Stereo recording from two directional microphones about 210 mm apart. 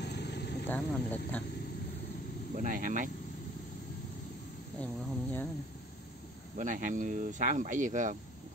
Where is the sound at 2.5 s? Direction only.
40° right (ahead or behind).